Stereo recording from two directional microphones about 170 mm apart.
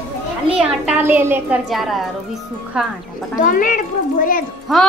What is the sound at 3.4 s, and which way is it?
Speech, 55° left (ahead or behind).